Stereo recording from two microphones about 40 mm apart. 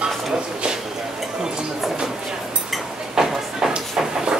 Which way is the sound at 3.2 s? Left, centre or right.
Centre.